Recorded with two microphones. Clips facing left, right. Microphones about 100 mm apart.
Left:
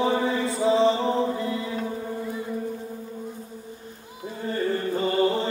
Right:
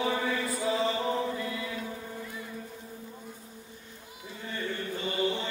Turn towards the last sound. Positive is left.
turn(degrees=35)  # may be behind; listen again after turning